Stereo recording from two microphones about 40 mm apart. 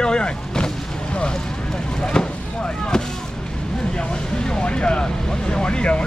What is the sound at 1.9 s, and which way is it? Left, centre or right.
Speech, centre.